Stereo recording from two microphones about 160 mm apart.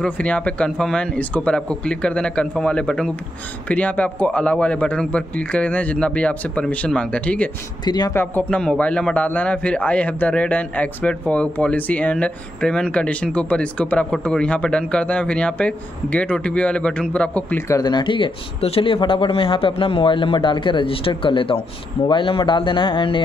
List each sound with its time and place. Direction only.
0.0 s a man's voice: 10° left (ahead or behind)
7.8 s speech: 25° left (ahead or behind)
8.2 s a man's voice: 10° left (ahead or behind); by 23.2 s 30° left (ahead or behind)